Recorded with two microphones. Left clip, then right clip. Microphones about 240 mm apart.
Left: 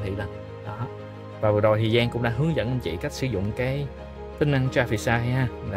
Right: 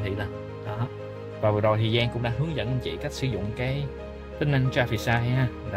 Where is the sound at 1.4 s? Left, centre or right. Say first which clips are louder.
Left 3 dB; left.